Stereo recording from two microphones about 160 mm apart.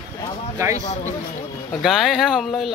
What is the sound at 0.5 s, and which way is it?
Speech, 20° right (ahead or behind).